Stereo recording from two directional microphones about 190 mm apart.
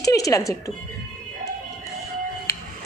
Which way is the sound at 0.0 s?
15° left (ahead or behind).